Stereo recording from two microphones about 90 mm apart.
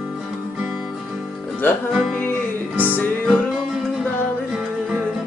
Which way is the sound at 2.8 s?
20° left (ahead or behind).